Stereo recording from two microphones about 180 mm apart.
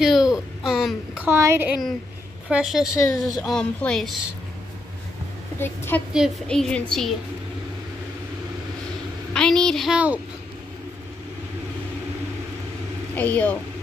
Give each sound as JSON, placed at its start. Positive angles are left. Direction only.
{"t": 0.0, "sound": "a sound", "side_deg": 0}
{"t": 2.5, "sound": "a woman's voice", "side_deg": 0}
{"t": 2.9, "sound": "speech", "side_deg": 20}
{"t": 3.4, "sound": "a woman's voice", "side_deg": 5}
{"t": 5.6, "sound": "a woman's voice", "side_deg": 10}
{"t": 6.1, "sound": "a woman's voice", "side_deg": 0}
{"t": 9.3, "sound": "a woman's voice", "side_deg": 5}
{"t": 13.1, "sound": "speech", "side_deg": 10}